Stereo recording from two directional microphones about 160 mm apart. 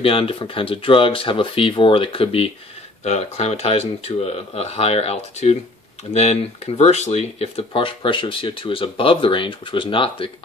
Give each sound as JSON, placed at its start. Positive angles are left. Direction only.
{"t": 0.0, "sound": "speech", "side_deg": 35}